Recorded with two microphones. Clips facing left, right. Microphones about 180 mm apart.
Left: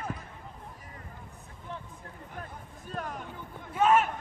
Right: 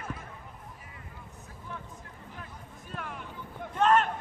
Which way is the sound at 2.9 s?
40° left (ahead or behind).